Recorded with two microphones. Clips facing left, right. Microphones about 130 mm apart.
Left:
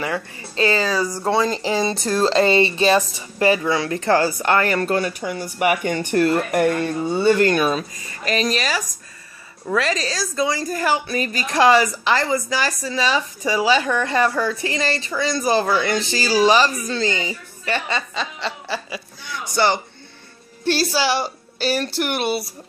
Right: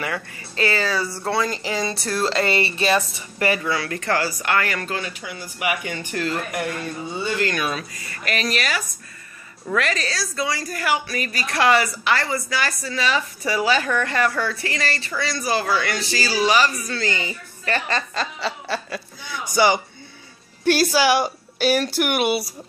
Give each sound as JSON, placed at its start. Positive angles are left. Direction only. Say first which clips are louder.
{"t": 0.0, "sound": "speech", "louder": "left 3 dB", "side_deg": 25}
{"t": 0.9, "sound": "a woman's voice", "louder": "left 4 dB", "side_deg": 15}
{"t": 4.9, "sound": "speech", "louder": "left 8 dB", "side_deg": 45}
{"t": 7.5, "sound": "a woman's voice", "louder": "left 6 dB", "side_deg": 30}
{"t": 17.8, "sound": "chuckle", "louder": "even", "side_deg": 0}
{"t": 19.5, "sound": "a man's voice", "louder": "right 1 dB", "side_deg": -10}
{"t": 21.5, "sound": "chuckle", "louder": "right 2 dB", "side_deg": -5}